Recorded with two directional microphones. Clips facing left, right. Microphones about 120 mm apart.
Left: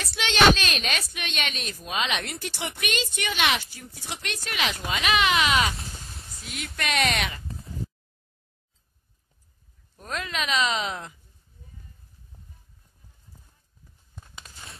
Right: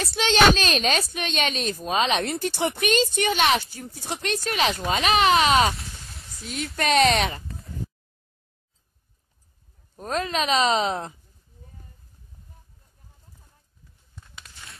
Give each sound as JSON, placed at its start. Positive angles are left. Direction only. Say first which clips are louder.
{"t": 0.0, "sound": "a woman's voice", "louder": "right 2 dB", "side_deg": -35}
{"t": 9.9, "sound": "a woman's voice", "louder": "right 6 dB", "side_deg": -35}
{"t": 14.1, "sound": "tearing", "louder": "left 1 dB", "side_deg": 40}